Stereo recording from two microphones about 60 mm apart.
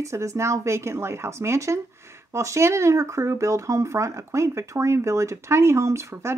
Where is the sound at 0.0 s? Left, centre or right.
Right.